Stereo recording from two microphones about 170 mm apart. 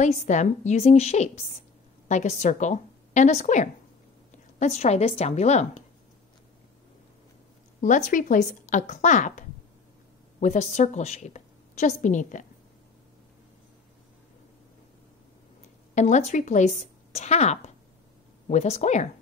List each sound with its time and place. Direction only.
0.0 s a woman's voice: 45° left (ahead or behind)
7.8 s a woman's voice: 45° left (ahead or behind)
10.4 s a woman's voice: 45° left (ahead or behind)
15.9 s a woman's voice: 45° left (ahead or behind)